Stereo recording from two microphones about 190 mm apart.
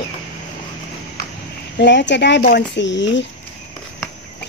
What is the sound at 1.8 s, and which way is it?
Speech, 65° left (ahead or behind).